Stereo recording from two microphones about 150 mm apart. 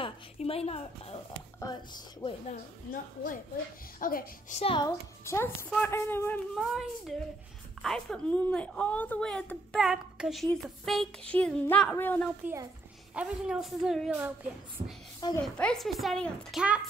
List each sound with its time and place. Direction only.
0.0 s a woman's voice: 40° left (ahead or behind)
2.4 s a woman's voice: 65° left (ahead or behind)
4.7 s a child's voice: 20° left (ahead or behind)
6.5 s a woman's voice: centre (ahead or behind)
13.1 s a woman's voice: 5° right (ahead or behind)
14.8 s a woman's voice: 60° right (ahead or behind)
15.4 s a woman's voice: 5° left (ahead or behind)